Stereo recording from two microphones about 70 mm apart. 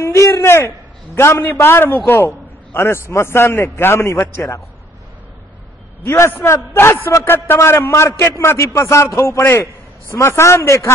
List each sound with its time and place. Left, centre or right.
0.0 s a man's voice: left
6.0 s a man's voice: left